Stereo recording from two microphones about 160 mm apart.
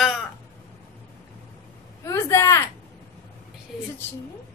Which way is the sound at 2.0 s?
20° left (ahead or behind).